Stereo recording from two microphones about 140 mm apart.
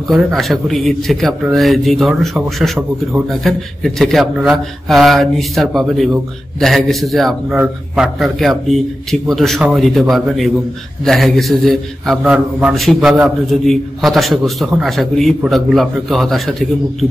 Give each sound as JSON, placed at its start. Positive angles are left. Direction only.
{"t": 0.1, "sound": "a man's voice", "side_deg": 0}